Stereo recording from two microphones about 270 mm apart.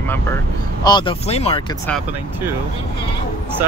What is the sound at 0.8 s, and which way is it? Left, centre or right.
Speech, centre.